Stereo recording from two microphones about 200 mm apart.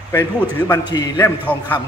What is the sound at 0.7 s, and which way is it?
Speech, 20° left (ahead or behind).